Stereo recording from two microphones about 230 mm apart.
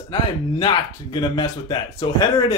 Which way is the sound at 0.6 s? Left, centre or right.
Left.